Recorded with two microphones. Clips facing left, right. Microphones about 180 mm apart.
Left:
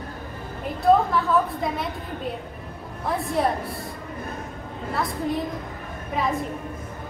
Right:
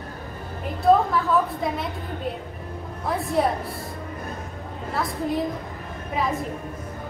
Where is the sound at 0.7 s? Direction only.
Centre (ahead or behind).